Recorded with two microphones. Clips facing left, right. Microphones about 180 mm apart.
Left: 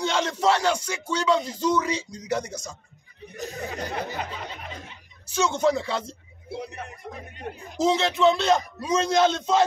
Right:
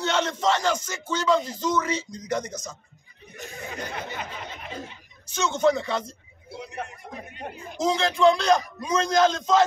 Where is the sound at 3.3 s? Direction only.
40° left (ahead or behind).